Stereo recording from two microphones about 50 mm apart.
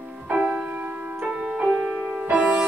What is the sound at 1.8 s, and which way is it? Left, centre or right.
Music, right.